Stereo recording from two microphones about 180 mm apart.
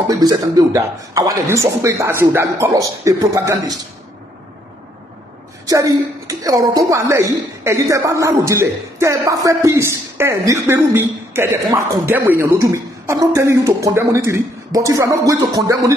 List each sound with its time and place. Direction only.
0.1 s a woman's voice: 20° right (ahead or behind)
5.7 s a woman's voice: 20° right (ahead or behind)